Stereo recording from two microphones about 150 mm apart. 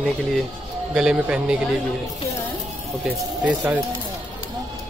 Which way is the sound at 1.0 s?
5° right (ahead or behind).